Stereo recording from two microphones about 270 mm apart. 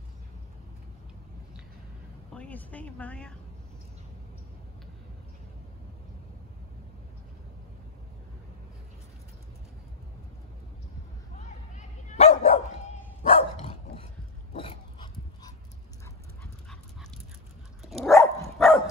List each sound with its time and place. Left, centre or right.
2.3 s a woman's voice: centre
11.3 s dog: left
17.8 s dog: centre